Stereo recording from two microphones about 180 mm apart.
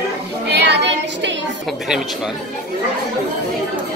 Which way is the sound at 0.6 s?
70° right (ahead or behind).